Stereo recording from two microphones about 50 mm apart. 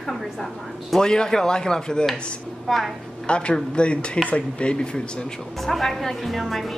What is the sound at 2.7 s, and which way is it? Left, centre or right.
Speech, centre.